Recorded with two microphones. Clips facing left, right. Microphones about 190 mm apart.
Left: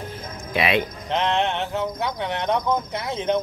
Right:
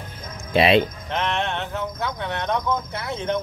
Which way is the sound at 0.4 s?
30° right (ahead or behind).